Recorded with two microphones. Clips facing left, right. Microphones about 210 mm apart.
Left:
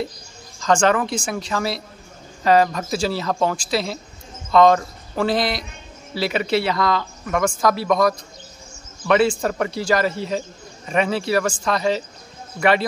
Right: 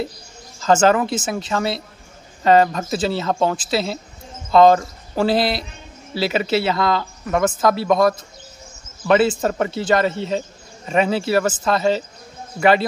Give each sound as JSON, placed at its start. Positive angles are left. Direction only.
{"t": 0.6, "sound": "speech", "side_deg": -5}
{"t": 4.5, "sound": "speech", "side_deg": -30}
{"t": 6.1, "sound": "speech", "side_deg": -5}